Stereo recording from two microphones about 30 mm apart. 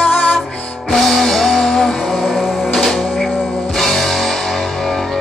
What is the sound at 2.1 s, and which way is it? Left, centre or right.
Music, centre.